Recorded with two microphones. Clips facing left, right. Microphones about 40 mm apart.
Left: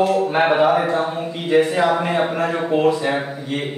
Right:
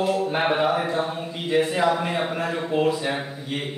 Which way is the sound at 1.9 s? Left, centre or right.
Centre.